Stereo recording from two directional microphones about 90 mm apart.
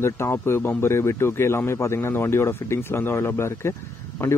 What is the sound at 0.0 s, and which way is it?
Speech, 30° left (ahead or behind).